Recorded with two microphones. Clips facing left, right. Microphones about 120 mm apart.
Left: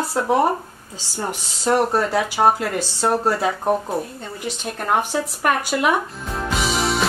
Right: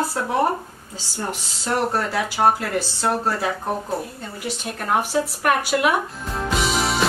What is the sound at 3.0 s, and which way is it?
Speech, 15° left (ahead or behind).